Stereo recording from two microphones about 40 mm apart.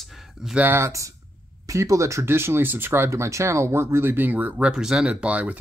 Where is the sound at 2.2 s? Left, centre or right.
Right.